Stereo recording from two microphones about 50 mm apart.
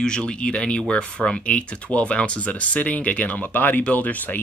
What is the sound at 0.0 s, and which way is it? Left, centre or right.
Speech, centre.